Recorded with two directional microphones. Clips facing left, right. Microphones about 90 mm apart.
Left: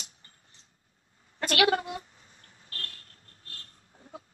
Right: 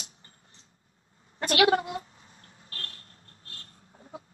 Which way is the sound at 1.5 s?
20° right (ahead or behind).